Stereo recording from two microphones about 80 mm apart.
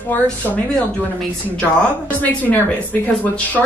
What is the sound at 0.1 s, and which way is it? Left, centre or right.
Speech, left.